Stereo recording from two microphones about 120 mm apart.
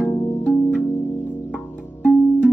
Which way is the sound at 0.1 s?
20° left (ahead or behind).